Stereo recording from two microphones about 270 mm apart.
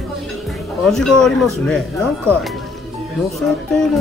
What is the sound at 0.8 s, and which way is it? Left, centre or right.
Speech, centre.